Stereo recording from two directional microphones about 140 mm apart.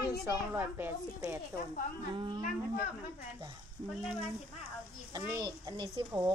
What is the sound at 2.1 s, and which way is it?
Speech, 35° right (ahead or behind).